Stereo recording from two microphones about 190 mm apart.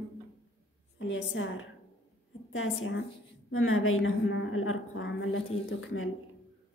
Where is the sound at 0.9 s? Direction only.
75° left (ahead or behind).